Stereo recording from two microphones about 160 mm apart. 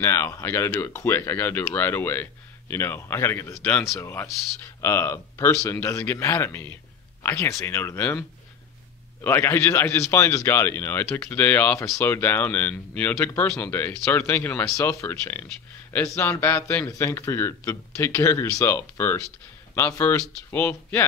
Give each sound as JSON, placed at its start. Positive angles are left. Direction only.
{"t": 0.0, "sound": "speech", "side_deg": 15}